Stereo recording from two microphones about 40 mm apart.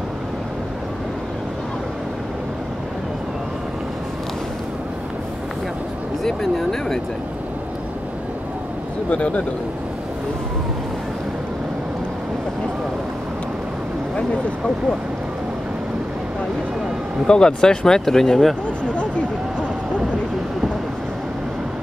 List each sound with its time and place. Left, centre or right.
6.2 s speech: centre
9.1 s speech: left
17.3 s speech: centre
18.9 s a sound: left